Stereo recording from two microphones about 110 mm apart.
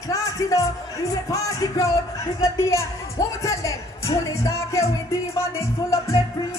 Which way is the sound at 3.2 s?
30° left (ahead or behind).